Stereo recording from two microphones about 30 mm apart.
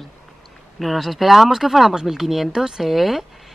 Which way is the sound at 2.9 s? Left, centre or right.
Centre.